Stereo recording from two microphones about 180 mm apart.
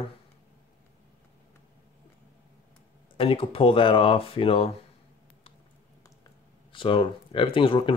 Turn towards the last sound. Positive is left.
turn(degrees=30)  # may be behind; listen again after turning